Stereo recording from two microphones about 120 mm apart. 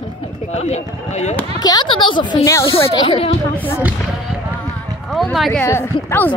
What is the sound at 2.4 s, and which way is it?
Speech, 25° left (ahead or behind).